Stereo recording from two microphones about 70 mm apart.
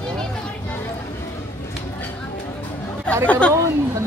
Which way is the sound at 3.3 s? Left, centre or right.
Centre.